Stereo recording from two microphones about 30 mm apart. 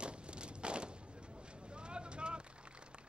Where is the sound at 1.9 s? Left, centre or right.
Right.